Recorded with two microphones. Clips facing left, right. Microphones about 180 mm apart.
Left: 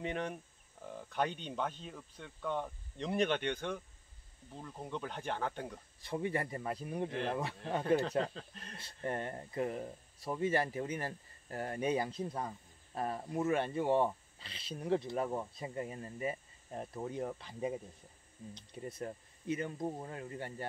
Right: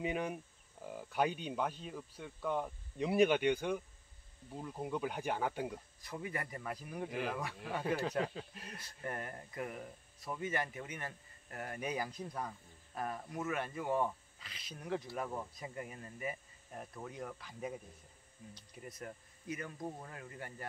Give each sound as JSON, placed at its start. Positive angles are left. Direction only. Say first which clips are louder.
{"t": 0.0, "sound": "speech", "louder": "right 1 dB", "side_deg": -10}
{"t": 5.9, "sound": "speech", "louder": "left 10 dB", "side_deg": 30}
{"t": 7.1, "sound": "speech", "louder": "left 2 dB", "side_deg": -5}
{"t": 8.7, "sound": "speech", "louder": "left 5 dB", "side_deg": 25}